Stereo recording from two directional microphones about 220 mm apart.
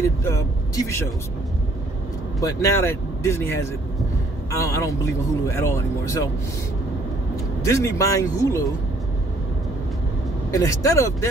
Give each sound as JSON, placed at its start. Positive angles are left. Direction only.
{"t": 0.2, "sound": "a man's voice", "side_deg": 15}
{"t": 2.4, "sound": "a man's voice", "side_deg": 15}
{"t": 7.6, "sound": "a man's voice", "side_deg": 15}
{"t": 10.5, "sound": "a man's voice", "side_deg": 15}